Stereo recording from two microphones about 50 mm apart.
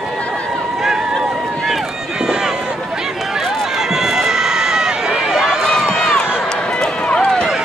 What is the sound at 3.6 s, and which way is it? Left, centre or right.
Run, centre.